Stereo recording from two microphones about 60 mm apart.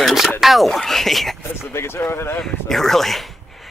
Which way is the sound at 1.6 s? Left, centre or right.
Left.